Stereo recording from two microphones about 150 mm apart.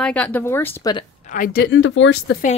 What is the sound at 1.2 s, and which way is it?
Speech, 60° left (ahead or behind).